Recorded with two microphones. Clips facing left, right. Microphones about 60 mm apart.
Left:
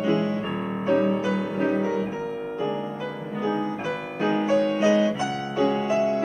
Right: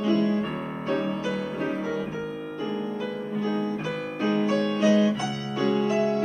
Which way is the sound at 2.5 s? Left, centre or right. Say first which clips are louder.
Left 1 dB; centre.